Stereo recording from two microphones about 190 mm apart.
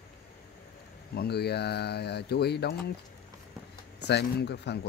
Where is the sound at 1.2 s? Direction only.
60° left (ahead or behind).